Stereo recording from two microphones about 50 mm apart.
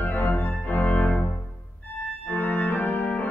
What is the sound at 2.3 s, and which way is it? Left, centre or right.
Organ, left.